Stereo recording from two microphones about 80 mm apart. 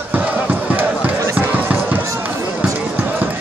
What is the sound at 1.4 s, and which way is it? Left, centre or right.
Music, right.